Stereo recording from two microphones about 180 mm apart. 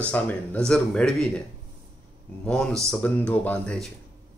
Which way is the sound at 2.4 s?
5° left (ahead or behind).